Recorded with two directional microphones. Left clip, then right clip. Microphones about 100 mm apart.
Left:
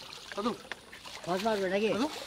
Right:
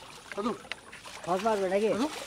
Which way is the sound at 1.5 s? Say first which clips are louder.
Right 2 dB; 50° left (ahead or behind).